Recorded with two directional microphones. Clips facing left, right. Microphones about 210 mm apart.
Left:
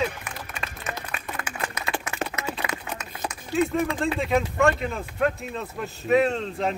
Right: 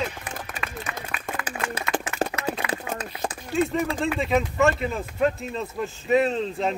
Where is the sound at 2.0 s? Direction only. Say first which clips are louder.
Right 4 dB; 30° right (ahead or behind).